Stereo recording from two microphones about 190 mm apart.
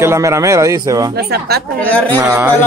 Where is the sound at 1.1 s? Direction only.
55° right (ahead or behind).